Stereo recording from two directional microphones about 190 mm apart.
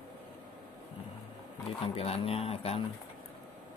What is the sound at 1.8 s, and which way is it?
Speech, 30° left (ahead or behind).